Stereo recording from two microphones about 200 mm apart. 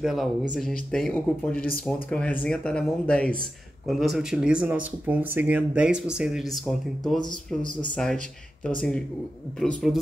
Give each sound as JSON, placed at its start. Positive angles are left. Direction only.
{"t": 0.0, "sound": "speech", "side_deg": 0}
{"t": 7.2, "sound": "speech", "side_deg": 20}
{"t": 7.9, "sound": "speech", "side_deg": 0}
{"t": 9.6, "sound": "speech", "side_deg": 0}